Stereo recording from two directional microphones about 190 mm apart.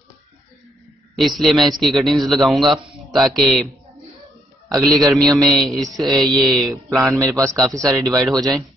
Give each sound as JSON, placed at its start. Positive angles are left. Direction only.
{"t": 1.1, "sound": "a man's voice", "side_deg": 0}
{"t": 4.8, "sound": "a man's voice", "side_deg": 0}
{"t": 7.1, "sound": "a man's voice", "side_deg": -15}
{"t": 8.2, "sound": "a man's voice", "side_deg": 0}